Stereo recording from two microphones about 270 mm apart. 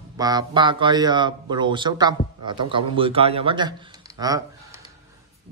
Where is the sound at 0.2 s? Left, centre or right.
Centre.